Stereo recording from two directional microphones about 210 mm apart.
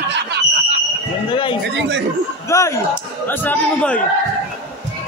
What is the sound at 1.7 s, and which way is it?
Speech, 60° right (ahead or behind).